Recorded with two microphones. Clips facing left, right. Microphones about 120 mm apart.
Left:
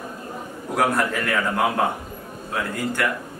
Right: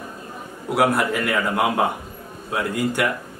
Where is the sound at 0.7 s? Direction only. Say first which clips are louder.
Right 2 dB; 10° right (ahead or behind).